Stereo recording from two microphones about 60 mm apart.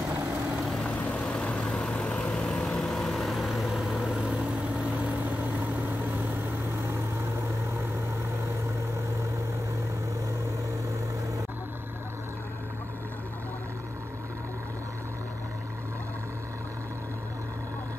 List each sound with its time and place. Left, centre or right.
0.8 s vehicle: centre